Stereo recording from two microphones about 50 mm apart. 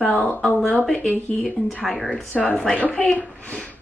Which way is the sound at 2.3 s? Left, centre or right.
Left.